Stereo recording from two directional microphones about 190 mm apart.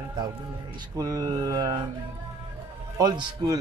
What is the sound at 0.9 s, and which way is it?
Speech, 20° right (ahead or behind).